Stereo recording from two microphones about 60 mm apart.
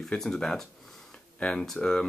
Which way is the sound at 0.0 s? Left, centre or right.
Centre.